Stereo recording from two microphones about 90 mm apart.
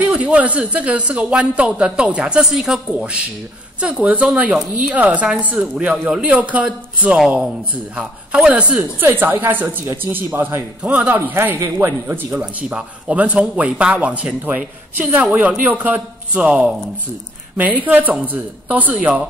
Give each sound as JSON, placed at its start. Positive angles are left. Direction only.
{"t": 0.0, "sound": "speech", "side_deg": -15}
{"t": 8.9, "sound": "speech", "side_deg": -25}
{"t": 12.4, "sound": "speech", "side_deg": -15}